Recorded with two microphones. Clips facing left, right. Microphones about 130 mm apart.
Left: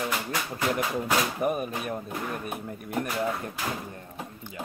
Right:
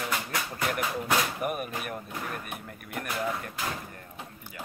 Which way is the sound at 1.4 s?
25° left (ahead or behind).